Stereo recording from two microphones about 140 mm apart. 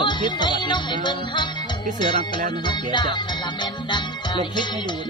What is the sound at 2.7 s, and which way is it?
Music, 35° left (ahead or behind).